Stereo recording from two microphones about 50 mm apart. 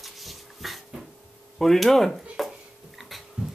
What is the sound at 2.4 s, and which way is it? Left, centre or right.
Dishes, centre.